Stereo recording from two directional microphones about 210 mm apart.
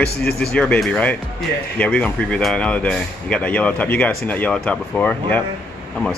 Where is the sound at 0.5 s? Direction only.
5° left (ahead or behind).